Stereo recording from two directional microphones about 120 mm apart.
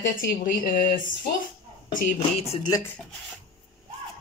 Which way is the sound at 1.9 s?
60° left (ahead or behind).